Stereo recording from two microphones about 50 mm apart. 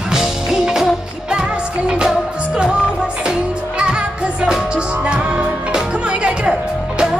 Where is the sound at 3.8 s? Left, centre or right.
Right.